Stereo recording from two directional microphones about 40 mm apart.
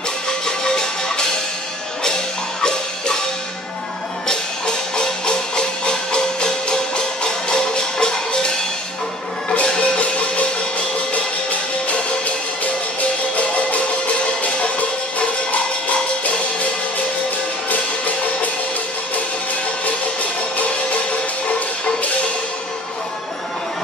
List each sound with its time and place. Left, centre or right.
0.5 s music: centre
4.3 s music: centre
9.5 s music: left
13.4 s music: left
17.6 s music: left